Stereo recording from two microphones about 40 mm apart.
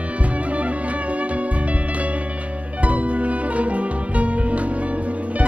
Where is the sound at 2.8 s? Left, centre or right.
Right.